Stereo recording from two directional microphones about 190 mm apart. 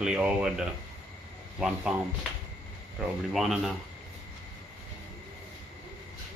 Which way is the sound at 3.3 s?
Centre (ahead or behind).